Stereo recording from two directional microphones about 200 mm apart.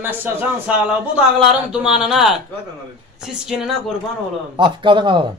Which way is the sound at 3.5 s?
Centre (ahead or behind).